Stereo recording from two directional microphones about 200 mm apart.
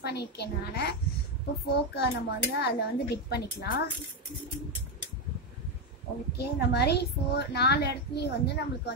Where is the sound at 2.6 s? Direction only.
55° left (ahead or behind).